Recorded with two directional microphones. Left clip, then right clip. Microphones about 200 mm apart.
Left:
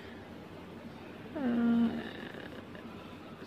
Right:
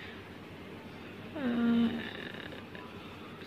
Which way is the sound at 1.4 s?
15° left (ahead or behind).